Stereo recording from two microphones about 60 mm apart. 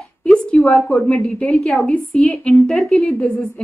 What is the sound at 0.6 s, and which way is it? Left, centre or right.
A woman's voice, centre.